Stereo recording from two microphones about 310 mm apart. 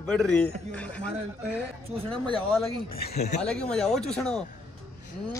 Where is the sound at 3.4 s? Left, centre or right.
Centre.